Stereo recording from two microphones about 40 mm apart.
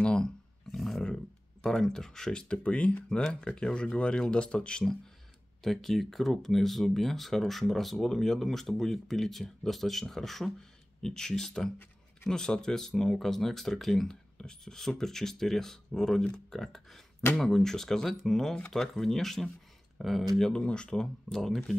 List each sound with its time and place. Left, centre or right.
0.0 s a sound: left
0.7 s a sound: centre
1.1 s speech: centre; by 3.0 s left
3.3 s speech: left
5.6 s speech: centre
14.0 s speech: centre
20.4 s speech: left
21.3 s speech: centre